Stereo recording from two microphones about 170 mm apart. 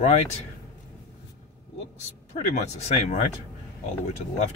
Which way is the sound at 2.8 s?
40° left (ahead or behind).